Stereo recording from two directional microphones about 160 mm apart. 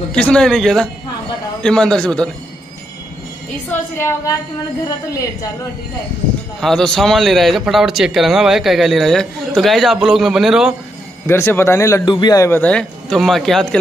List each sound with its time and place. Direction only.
0.1 s a man's voice: 5° left (ahead or behind)
4.8 s a woman's voice: 25° left (ahead or behind)
6.6 s a man's voice: 5° left (ahead or behind)
11.2 s a man's voice: 15° left (ahead or behind)
12.4 s a man's voice: 10° left (ahead or behind)